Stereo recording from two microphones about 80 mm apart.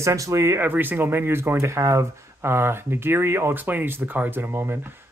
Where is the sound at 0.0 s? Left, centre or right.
Right.